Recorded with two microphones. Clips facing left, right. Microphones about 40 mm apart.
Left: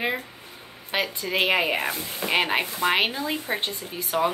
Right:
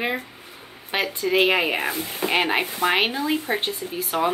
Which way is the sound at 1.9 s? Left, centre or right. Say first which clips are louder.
Right 4 dB; right.